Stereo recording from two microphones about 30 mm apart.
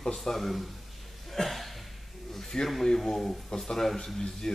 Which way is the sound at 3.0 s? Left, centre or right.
Centre.